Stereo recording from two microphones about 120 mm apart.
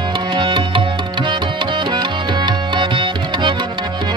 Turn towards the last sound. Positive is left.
turn(degrees=-45)  # may be behind; listen again after turning